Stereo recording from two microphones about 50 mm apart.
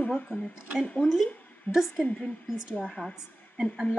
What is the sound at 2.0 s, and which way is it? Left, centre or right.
A woman's voice, left.